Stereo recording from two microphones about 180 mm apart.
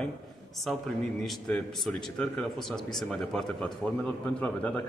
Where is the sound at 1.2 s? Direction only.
5° left (ahead or behind).